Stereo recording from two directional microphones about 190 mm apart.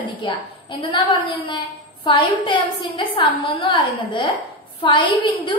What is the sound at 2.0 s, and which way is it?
A woman's voice, 25° left (ahead or behind).